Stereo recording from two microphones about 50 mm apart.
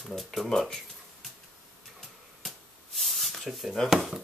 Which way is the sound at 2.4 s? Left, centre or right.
Centre.